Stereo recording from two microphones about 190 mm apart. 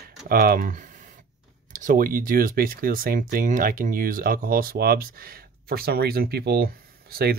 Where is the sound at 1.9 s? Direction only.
45° right (ahead or behind).